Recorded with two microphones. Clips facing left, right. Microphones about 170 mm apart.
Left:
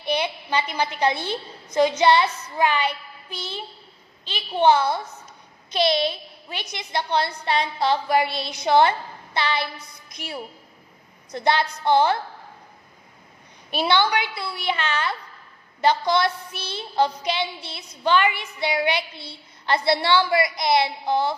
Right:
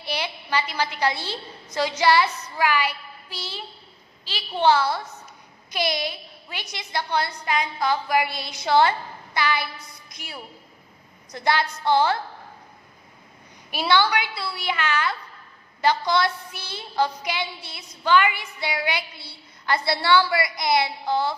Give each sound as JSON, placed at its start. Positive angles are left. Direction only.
{"t": 0.0, "sound": "a woman's voice", "side_deg": 20}
{"t": 13.7, "sound": "a woman's voice", "side_deg": 20}